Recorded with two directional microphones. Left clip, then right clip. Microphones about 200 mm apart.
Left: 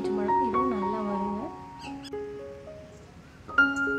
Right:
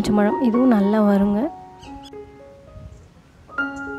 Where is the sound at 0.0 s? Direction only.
45° right (ahead or behind).